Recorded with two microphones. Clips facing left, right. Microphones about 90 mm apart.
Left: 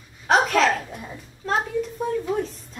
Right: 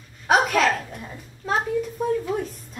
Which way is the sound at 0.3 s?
5° right (ahead or behind).